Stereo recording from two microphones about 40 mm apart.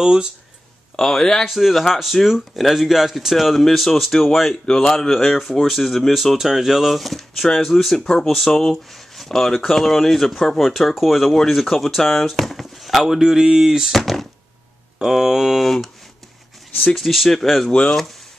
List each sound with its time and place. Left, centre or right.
0.0 s speech: centre
0.9 s speech: centre
1.4 s speech: centre
7.4 s speech: centre
13.2 s speech: centre
13.9 s speech: centre
15.0 s speech: centre
16.9 s speech: centre